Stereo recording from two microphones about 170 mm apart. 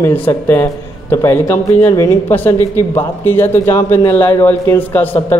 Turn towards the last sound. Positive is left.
turn(degrees=10)  # may be behind; listen again after turning